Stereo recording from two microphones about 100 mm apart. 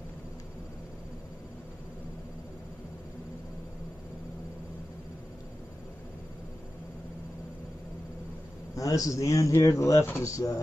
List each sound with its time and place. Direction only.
8.7 s speech: 35° left (ahead or behind)